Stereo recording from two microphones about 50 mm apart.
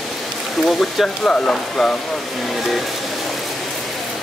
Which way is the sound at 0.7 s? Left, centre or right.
Centre.